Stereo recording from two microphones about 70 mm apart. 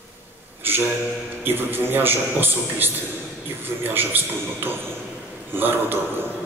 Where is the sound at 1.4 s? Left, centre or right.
Right.